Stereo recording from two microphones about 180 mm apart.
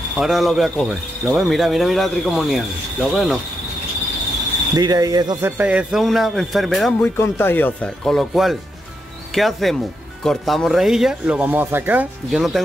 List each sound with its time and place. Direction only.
0.2 s speech: centre (ahead or behind)
4.7 s mechanisms: 20° right (ahead or behind)
5.6 s speech: 5° right (ahead or behind)